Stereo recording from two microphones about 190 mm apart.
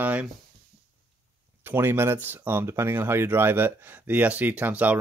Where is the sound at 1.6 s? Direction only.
10° right (ahead or behind).